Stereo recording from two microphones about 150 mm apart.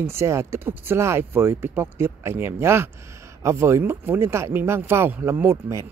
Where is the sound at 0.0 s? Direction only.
15° right (ahead or behind).